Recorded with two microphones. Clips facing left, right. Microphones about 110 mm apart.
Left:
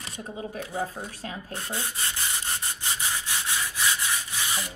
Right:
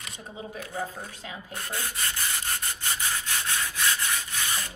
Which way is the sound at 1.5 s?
20° left (ahead or behind).